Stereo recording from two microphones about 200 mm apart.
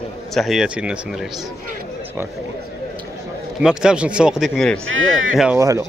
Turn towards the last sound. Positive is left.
turn(degrees=-15)  # may be behind; listen again after turning